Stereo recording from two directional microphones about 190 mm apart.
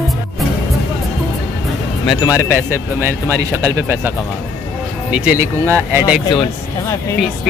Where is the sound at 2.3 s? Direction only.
10° right (ahead or behind).